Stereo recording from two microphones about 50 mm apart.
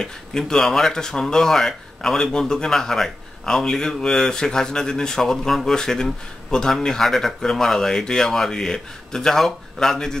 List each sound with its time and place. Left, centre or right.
0.0 s speech: centre